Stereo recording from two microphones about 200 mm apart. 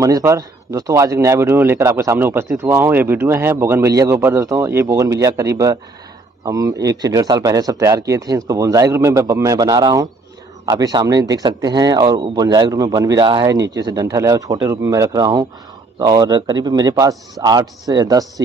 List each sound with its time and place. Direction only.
0.0 s a man's voice: 15° right (ahead or behind)